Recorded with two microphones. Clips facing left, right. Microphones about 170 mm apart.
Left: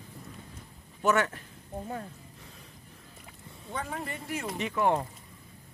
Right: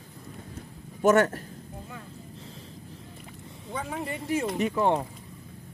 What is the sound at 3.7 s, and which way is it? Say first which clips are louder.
Speech: right 2 dB; 5° right (ahead or behind).